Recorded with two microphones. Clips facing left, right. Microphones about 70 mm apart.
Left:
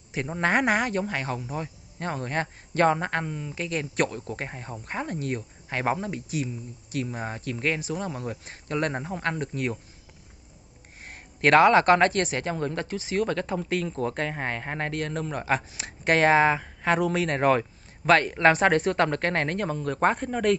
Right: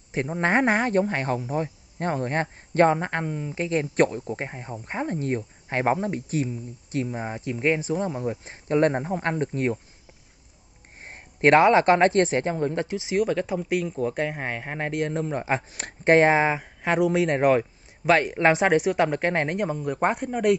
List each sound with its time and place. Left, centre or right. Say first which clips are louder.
0.4 s speech: right 1 dB; right
7.2 s speech: right 2 dB; centre
11.0 s speech: right 4 dB; right; by 14.9 s centre
14.9 s speech: right 8 dB; centre